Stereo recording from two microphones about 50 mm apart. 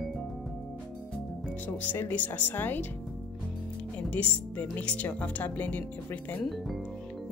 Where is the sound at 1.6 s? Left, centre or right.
Left.